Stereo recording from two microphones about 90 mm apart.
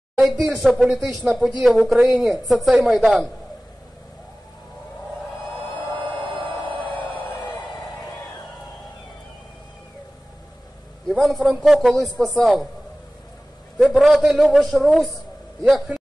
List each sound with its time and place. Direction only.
0.2 s a sound: centre (ahead or behind)
0.6 s a man's voice: centre (ahead or behind)
1.6 s a man's voice: 15° right (ahead or behind)
5.9 s music: 65° right (ahead or behind)
11.1 s a sound: centre (ahead or behind)
11.6 s a man's voice: 5° right (ahead or behind)
13.7 s a man's voice: 5° right (ahead or behind)